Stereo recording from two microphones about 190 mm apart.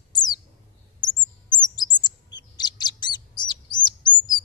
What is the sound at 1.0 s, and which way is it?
Bird, 20° left (ahead or behind).